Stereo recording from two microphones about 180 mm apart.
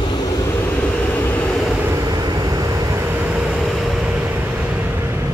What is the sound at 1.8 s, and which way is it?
Vehicle, 20° right (ahead or behind).